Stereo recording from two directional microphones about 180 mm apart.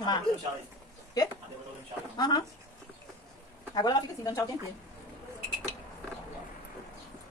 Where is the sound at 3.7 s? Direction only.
20° left (ahead or behind).